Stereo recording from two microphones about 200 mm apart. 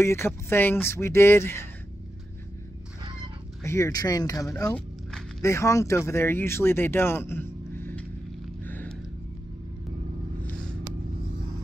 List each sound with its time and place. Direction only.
0.0 s speech: 15° left (ahead or behind)
3.6 s speech: 15° left (ahead or behind)
4.6 s speech: 5° left (ahead or behind)
8.6 s music: 10° left (ahead or behind)
10.4 s vehicle: 5° left (ahead or behind)